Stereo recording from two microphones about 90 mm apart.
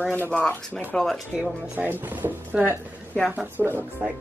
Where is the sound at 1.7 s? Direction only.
20° right (ahead or behind).